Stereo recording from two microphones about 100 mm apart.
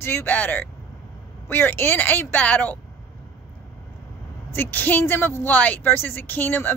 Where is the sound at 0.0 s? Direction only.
25° left (ahead or behind).